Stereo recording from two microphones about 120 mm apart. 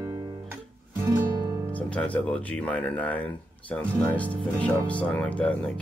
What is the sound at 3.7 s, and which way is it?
Speech, 10° left (ahead or behind).